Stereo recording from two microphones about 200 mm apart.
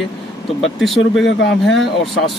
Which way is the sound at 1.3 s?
60° left (ahead or behind).